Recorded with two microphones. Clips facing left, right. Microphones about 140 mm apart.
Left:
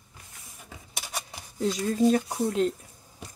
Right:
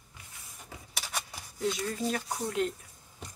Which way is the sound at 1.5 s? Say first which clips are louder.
Left 7 dB; 30° left (ahead or behind).